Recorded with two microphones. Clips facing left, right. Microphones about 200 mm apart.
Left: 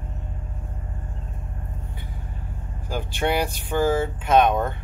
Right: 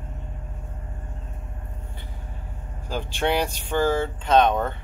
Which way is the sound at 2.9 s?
10° left (ahead or behind).